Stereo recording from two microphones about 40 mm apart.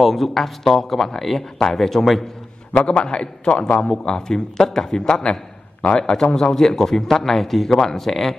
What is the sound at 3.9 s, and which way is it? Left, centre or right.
A man's voice, centre.